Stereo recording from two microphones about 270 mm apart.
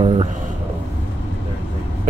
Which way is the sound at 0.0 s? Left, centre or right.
Right.